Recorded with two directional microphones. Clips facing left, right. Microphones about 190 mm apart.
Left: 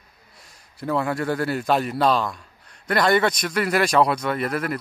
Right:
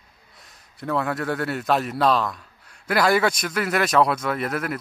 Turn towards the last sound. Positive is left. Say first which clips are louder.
# left 1 dB
turn(degrees=0)  # may be behind; listen again after turning